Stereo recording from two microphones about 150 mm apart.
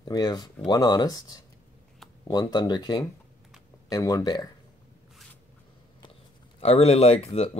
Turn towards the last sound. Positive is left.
turn(degrees=45)  # may be behind; listen again after turning